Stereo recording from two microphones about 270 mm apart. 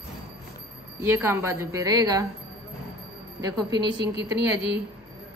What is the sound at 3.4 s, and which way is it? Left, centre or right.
A woman's voice, centre.